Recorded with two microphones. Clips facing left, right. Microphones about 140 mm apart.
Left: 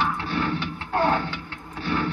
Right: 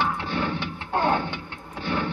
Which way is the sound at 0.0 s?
20° right (ahead or behind).